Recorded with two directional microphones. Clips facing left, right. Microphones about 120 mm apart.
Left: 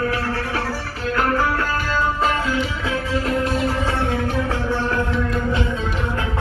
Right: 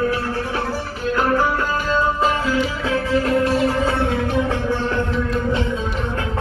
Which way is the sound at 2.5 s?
40° right (ahead or behind).